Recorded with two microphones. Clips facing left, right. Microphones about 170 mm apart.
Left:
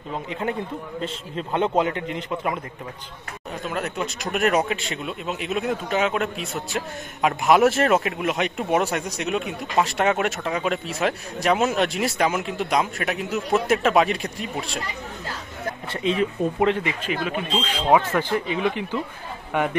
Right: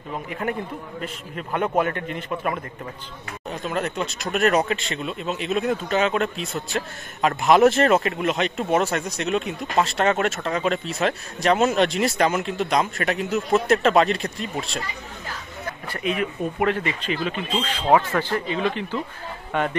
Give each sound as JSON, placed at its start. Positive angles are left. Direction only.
{"t": 0.1, "sound": "a man's voice", "side_deg": 20}
{"t": 3.6, "sound": "a man's voice", "side_deg": 5}
{"t": 15.9, "sound": "a man's voice", "side_deg": 30}